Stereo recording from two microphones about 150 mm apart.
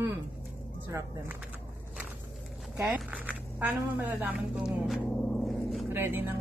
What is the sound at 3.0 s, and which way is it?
Speech, 10° right (ahead or behind).